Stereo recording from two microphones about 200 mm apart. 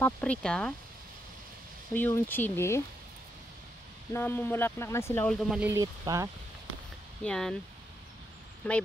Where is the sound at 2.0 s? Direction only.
10° left (ahead or behind).